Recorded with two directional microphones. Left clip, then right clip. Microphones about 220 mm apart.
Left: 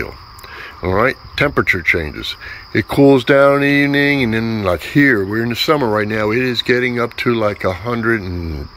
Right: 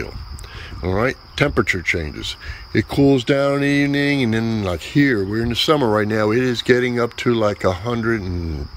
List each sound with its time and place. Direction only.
0.8 s speech: 5° right (ahead or behind)